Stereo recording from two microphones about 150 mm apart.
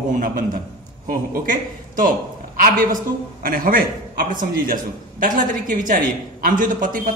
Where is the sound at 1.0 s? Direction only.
65° right (ahead or behind).